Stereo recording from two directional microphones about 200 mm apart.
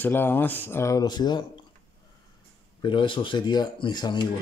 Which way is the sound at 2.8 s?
25° left (ahead or behind).